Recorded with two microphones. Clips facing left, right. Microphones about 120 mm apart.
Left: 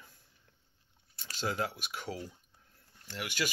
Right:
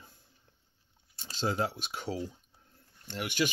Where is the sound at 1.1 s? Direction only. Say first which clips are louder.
Right 3 dB; 25° right (ahead or behind).